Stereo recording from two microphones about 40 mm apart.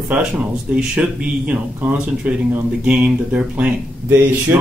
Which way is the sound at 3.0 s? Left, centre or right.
Right.